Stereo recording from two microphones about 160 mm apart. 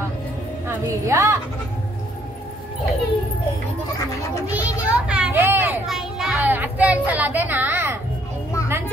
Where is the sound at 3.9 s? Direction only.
20° left (ahead or behind).